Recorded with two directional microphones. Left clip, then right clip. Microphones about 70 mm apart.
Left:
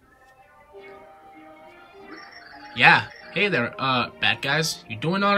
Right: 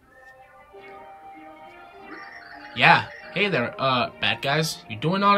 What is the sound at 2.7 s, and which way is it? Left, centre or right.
Speech, centre.